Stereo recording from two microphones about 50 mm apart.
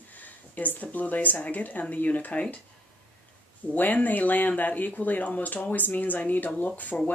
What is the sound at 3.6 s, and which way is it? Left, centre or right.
Speech, left.